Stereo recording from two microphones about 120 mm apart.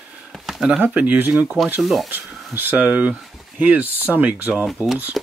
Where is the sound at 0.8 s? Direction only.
15° right (ahead or behind).